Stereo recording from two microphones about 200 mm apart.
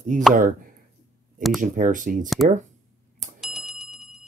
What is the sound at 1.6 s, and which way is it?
Speech, 40° right (ahead or behind).